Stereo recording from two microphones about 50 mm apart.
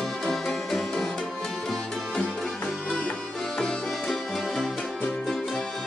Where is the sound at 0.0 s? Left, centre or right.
Centre.